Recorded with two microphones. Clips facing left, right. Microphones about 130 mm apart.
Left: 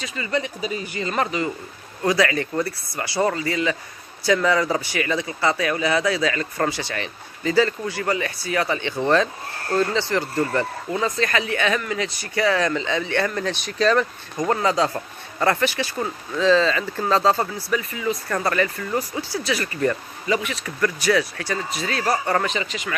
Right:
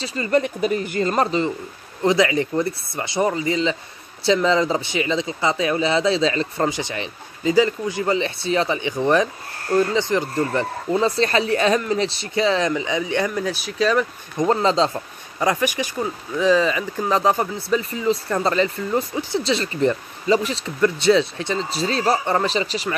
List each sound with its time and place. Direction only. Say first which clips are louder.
0.0 s speech: right 4 dB; 35° right (ahead or behind)
0.3 s speech: right 6 dB; 55° right (ahead or behind)
1.1 s speech: right 2 dB; 30° right (ahead or behind)
2.0 s speech: right 3 dB; 20° right (ahead or behind)
11.0 s speech: right 4 dB; 30° right (ahead or behind); by 14.5 s 5° right (ahead or behind)
14.5 s speech: right 2 dB; 25° right (ahead or behind)
15.3 s speech: even; 10° right (ahead or behind); by 22.9 s 35° right (ahead or behind)